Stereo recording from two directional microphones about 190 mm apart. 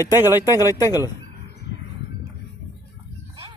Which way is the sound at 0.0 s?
10° right (ahead or behind).